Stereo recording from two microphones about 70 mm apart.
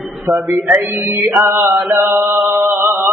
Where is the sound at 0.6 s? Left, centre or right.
Right.